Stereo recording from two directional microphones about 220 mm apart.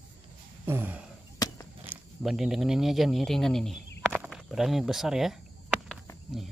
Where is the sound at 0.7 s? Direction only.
10° right (ahead or behind).